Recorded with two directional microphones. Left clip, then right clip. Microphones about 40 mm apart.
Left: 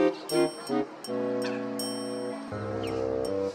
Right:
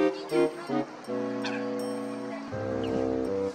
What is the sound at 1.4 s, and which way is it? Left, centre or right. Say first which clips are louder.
Music: even; right.